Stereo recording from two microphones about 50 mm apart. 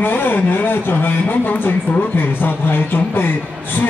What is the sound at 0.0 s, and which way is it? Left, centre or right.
Speech, left.